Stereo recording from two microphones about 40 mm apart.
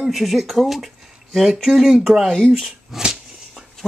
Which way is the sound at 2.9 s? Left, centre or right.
Centre.